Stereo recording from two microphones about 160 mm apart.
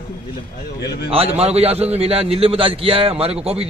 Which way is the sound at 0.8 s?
80° left.